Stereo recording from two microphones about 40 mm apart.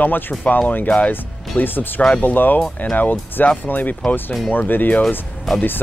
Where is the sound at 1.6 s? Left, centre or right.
Left.